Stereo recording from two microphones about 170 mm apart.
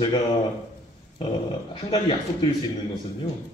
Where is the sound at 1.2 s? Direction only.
30° left (ahead or behind).